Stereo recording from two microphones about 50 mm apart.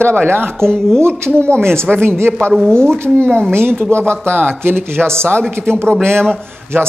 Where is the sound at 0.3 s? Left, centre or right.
Right.